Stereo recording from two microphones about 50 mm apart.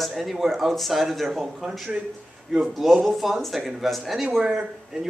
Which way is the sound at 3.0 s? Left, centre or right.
Centre.